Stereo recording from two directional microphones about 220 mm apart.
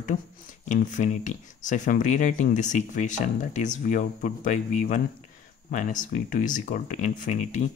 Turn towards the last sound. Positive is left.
turn(degrees=35)  # may be behind; listen again after turning